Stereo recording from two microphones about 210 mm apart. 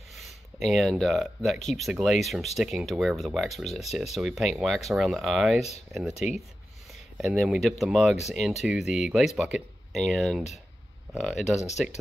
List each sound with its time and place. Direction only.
0.2 s speech: centre (ahead or behind)